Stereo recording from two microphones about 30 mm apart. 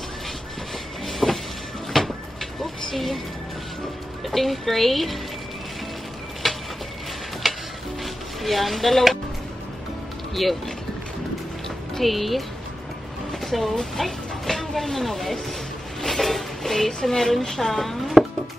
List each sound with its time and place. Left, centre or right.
1.0 s train: centre
2.0 s cupboard open or close: centre
2.6 s a sound: centre
4.3 s speech: centre
6.4 s a sound: centre
7.4 s tick-tock: centre
8.0 s speech: centre
10.4 s speech: centre
11.9 s speech: centre
13.9 s vehicle: centre
14.7 s speech: centre
16.0 s a sound: centre
17.1 s a woman's voice: centre
18.2 s music: right